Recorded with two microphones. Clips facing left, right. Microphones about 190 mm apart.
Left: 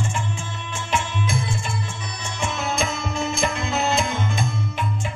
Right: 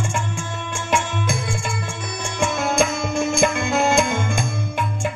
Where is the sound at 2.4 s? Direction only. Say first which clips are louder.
Right 6 dB; 50° right (ahead or behind).